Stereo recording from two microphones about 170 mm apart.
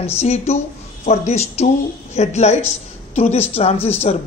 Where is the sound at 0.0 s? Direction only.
40° left (ahead or behind).